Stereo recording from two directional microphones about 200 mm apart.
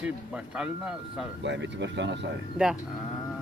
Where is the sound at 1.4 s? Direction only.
65° right (ahead or behind).